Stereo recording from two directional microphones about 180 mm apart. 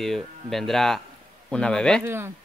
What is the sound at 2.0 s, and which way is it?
Speech, 15° right (ahead or behind).